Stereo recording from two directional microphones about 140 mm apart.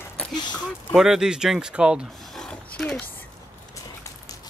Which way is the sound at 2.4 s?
5° left (ahead or behind).